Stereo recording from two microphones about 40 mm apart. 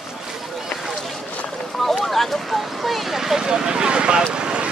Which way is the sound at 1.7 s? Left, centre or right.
Centre.